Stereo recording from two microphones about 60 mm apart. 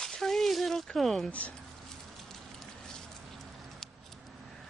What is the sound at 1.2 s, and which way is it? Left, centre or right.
Speech, left.